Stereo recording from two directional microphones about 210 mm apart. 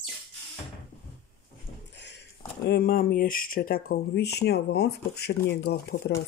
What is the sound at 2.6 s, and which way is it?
Speech, 45° left (ahead or behind).